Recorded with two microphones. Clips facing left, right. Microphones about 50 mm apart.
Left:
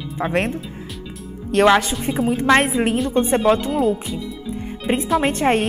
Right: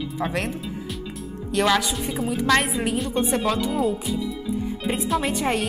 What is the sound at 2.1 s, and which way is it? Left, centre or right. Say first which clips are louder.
Speech: left 5 dB; left.